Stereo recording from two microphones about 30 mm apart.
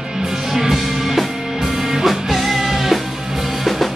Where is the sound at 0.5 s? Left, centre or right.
Centre.